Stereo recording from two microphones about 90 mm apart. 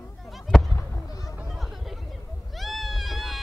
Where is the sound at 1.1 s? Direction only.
40° left (ahead or behind).